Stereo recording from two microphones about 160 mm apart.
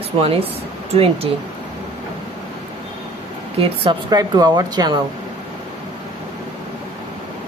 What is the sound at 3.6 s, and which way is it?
A woman's voice, 30° right (ahead or behind).